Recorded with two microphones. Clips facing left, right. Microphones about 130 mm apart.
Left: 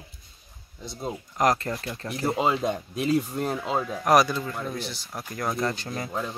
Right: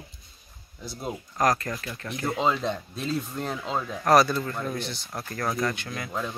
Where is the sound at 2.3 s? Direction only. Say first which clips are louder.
Even; 10° left (ahead or behind).